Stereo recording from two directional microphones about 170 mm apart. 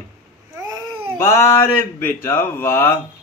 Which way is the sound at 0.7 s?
20° right (ahead or behind).